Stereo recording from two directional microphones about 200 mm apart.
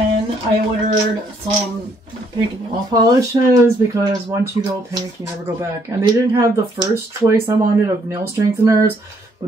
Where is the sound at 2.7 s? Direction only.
20° right (ahead or behind).